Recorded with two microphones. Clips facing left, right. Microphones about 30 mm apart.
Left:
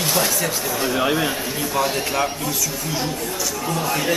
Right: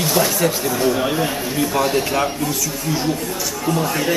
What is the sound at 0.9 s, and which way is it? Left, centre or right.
Speech, centre.